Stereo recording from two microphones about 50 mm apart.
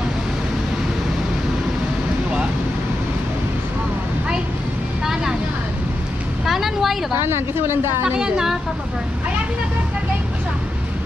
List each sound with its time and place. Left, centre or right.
5.0 s vehicle: centre
6.4 s vehicle: centre
7.2 s speech: right
8.0 s a woman's voice: centre